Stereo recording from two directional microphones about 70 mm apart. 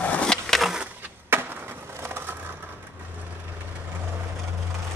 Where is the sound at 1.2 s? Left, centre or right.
Right.